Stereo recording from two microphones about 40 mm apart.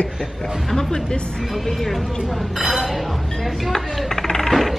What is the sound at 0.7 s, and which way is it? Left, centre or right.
Speech, centre.